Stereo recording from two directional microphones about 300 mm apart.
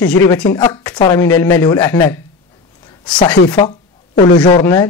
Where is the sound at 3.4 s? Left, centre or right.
Centre.